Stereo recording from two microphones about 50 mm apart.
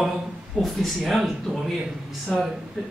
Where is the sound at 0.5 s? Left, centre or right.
Centre.